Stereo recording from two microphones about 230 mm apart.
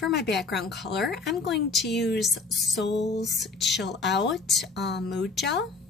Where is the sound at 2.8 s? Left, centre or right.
Left.